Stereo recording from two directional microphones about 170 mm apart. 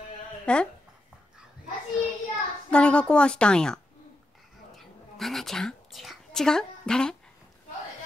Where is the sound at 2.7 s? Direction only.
5° left (ahead or behind).